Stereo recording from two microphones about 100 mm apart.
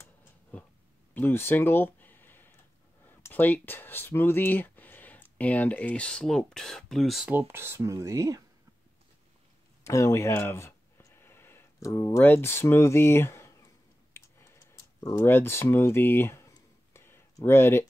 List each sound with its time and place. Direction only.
0.5 s a sound: 15° left (ahead or behind)
3.1 s speech: 20° left (ahead or behind); by 7.2 s centre (ahead or behind)
7.2 s speech: 20° right (ahead or behind)
9.8 s speech: 30° left (ahead or behind)
14.1 s clicking: 25° left (ahead or behind)